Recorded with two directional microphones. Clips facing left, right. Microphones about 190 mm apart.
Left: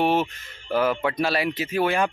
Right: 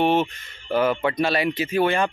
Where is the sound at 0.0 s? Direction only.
5° left (ahead or behind).